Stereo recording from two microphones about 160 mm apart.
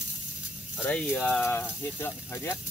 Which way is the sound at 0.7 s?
5° left (ahead or behind).